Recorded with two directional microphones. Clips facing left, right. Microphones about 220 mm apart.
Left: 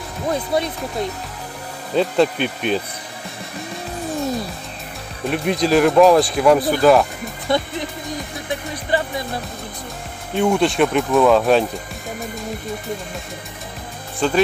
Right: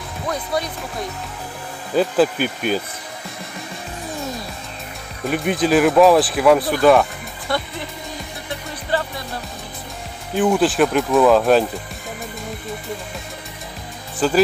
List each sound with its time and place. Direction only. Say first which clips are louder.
0.3 s speech: left 3 dB; 25° left (ahead or behind)
2.0 s speech: even; 5° right (ahead or behind)
4.1 s music: left 6 dB; centre (ahead or behind)
5.2 s speech: even; centre (ahead or behind)
7.5 s speech: left 4 dB; 20° left (ahead or behind)
8.9 s music: left 2 dB; 15° left (ahead or behind)
10.3 s speech: even; centre (ahead or behind)
14.2 s speech: right 1 dB; 5° right (ahead or behind)